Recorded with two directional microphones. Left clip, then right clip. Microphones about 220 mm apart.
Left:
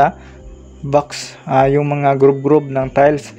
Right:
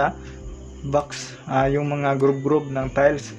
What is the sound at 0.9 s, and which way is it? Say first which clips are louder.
Speech: left 7 dB; 30° left (ahead or behind).